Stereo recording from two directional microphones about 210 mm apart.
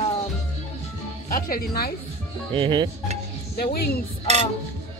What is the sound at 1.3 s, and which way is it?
Speech, 45° left (ahead or behind).